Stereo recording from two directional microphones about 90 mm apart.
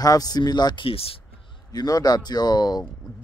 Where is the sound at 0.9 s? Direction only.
90° left.